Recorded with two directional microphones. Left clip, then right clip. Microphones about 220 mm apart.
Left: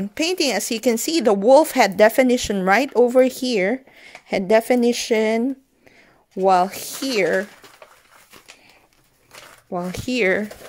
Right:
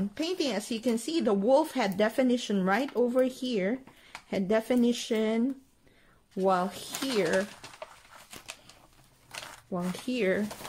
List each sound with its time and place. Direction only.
0.1 s speech: 40° left (ahead or behind)
9.7 s speech: 30° left (ahead or behind)